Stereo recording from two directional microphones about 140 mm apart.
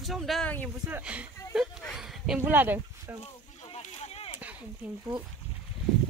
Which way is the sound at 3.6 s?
45° left (ahead or behind).